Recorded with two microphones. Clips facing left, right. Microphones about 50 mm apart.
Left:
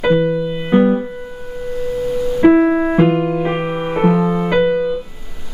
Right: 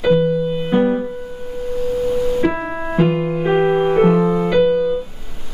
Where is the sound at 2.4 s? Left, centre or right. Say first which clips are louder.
Left 9 dB; centre.